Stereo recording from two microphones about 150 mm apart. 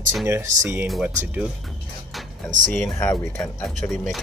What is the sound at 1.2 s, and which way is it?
Speech, 10° right (ahead or behind).